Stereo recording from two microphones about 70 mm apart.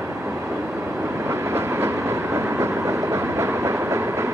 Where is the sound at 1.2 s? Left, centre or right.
Right.